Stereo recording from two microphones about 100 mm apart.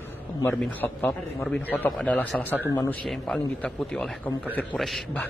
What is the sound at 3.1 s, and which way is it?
Speech, 5° left (ahead or behind).